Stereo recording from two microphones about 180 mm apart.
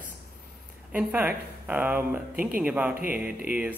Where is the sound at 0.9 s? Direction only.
10° right (ahead or behind).